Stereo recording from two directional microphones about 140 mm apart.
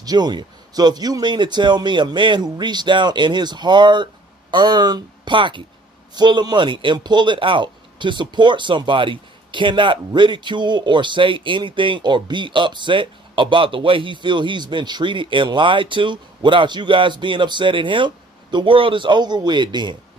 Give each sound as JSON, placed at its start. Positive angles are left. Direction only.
{"t": 0.0, "sound": "speech", "side_deg": -30}